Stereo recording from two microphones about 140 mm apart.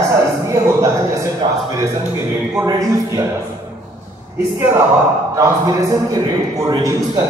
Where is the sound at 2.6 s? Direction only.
25° right (ahead or behind).